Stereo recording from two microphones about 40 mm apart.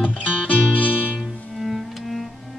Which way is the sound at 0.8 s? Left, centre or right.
Right.